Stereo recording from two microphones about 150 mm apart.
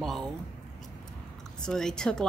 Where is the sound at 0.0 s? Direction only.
Centre (ahead or behind).